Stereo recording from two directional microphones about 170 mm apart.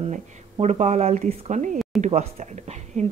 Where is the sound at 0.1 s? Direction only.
40° right (ahead or behind).